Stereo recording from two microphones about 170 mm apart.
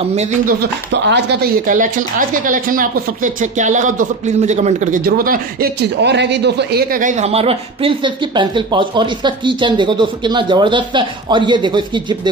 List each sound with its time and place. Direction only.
0.5 s speech: 80° right
1.7 s a woman's voice: 50° right (ahead or behind); by 12.2 s 30° right (ahead or behind)